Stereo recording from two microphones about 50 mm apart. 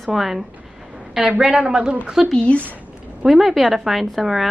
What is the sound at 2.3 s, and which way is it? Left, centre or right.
Speech, left.